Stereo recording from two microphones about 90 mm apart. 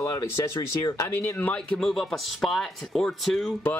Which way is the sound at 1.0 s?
30° left (ahead or behind).